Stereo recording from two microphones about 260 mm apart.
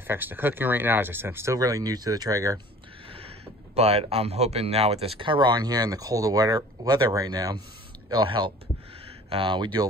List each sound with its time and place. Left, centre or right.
0.0 s speech: centre
3.7 s speech: right